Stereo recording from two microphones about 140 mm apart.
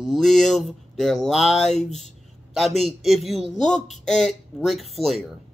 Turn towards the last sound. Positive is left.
turn(degrees=0)  # may be behind; listen again after turning